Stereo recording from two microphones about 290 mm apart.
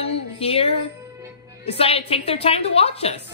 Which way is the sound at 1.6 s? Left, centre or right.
Centre.